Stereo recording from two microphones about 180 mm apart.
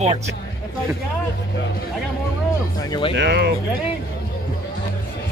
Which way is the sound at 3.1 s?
70° right (ahead or behind).